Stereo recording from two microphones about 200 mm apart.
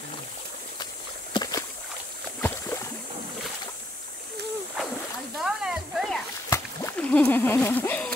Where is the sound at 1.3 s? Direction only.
20° left (ahead or behind).